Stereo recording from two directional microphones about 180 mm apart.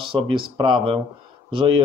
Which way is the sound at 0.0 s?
25° right (ahead or behind).